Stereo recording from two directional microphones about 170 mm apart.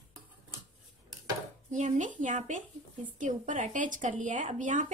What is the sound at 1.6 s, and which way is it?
A woman's voice, 45° right (ahead or behind).